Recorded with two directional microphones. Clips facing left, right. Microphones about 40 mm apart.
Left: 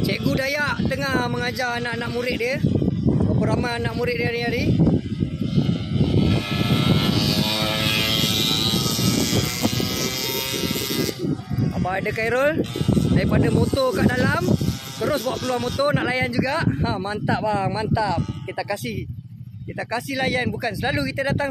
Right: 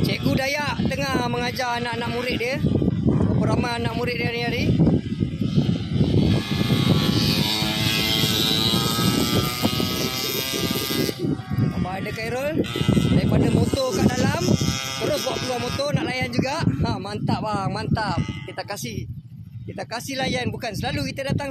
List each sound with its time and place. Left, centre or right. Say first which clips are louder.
0.0 s speech: even; centre
6.1 s vehicle: even; centre
7.5 s vehicle: left 1 dB; centre
8.7 s vehicle: even; right; by 11.1 s centre
11.9 s speech: left 5 dB; left
13.2 s speech: left 1 dB; left
14.4 s speech: even; right
15.8 s speech: left 6 dB; centre
20.1 s speech: left 2 dB; centre; by 21.5 s left